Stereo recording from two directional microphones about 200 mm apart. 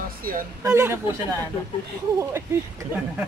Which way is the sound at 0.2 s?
45° right (ahead or behind).